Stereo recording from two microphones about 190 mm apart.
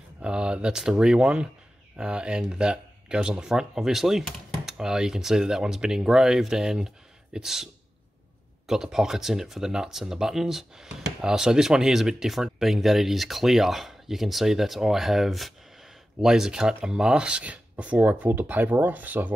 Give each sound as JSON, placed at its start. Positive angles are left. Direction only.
{"t": 0.2, "sound": "speech", "side_deg": -5}